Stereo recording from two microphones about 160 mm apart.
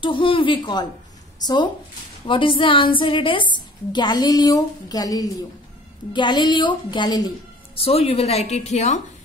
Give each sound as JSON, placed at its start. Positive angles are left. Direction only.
{"t": 0.0, "sound": "a woman's voice", "side_deg": 30}
{"t": 7.7, "sound": "a woman's voice", "side_deg": 40}